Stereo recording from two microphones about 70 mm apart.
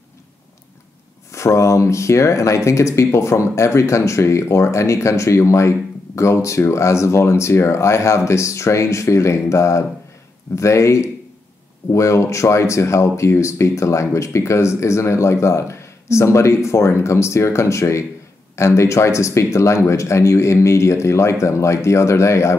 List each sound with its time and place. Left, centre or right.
1.3 s speech: left